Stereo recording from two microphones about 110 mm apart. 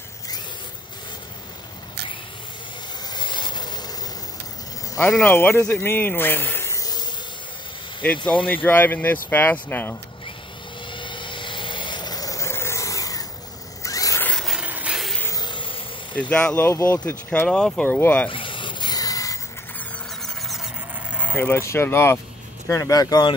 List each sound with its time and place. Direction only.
3.1 s vehicle: 45° left (ahead or behind)
5.2 s speech: 20° left (ahead or behind); by 7.1 s 35° left (ahead or behind)
8.0 s speech: 10° left (ahead or behind)
10.9 s vehicle: 45° left (ahead or behind); by 13.2 s 30° left (ahead or behind)
13.8 s zipper: 30° left (ahead or behind)
14.2 s a sound: 5° left (ahead or behind)
14.6 s a sound: 10° right (ahead or behind)
15.3 s a sound: 45° left (ahead or behind)
16.2 s speech: 10° left (ahead or behind)
18.3 s filing: 50° left (ahead or behind); by 19.4 s 30° left (ahead or behind)
20.2 s a sound: centre (ahead or behind)
21.4 s speech: 20° left (ahead or behind)